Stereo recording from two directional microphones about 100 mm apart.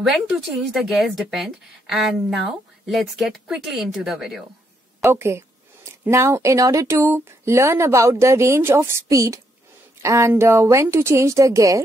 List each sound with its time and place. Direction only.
0.7 s speech: centre (ahead or behind)
5.0 s speech: 25° right (ahead or behind)